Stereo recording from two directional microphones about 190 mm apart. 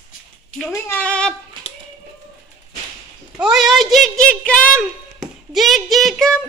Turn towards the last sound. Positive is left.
turn(degrees=0)  # may be behind; listen again after turning